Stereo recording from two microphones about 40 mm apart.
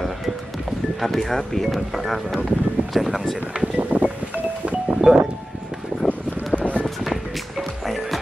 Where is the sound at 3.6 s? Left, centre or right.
Right.